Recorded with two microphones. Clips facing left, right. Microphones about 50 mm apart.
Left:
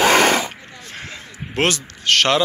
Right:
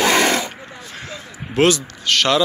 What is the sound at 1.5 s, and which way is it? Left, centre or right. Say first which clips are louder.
Speech: right 4 dB; left.